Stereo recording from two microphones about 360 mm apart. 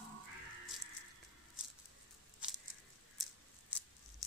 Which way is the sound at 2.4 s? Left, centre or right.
Centre.